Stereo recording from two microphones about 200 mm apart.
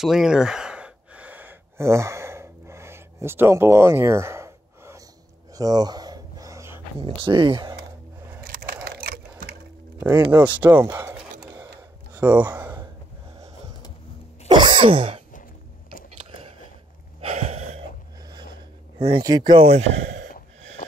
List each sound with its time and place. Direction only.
0.0 s gasp: centre (ahead or behind)
7.0 s speech: 25° right (ahead or behind)
8.8 s crushing: 50° right (ahead or behind)
10.0 s speech: 15° right (ahead or behind)
11.4 s computer keyboard: 15° right (ahead or behind)
14.5 s throat clearing: 25° right (ahead or behind)
17.2 s gasp: 35° right (ahead or behind)
18.9 s speech: 25° right (ahead or behind)